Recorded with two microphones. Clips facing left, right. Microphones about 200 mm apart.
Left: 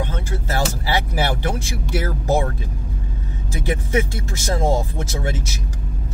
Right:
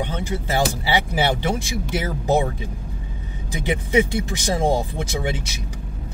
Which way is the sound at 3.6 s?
15° right (ahead or behind).